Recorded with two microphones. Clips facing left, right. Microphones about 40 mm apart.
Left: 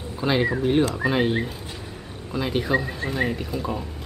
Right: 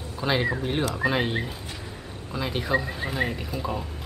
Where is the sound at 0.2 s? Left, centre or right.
Centre.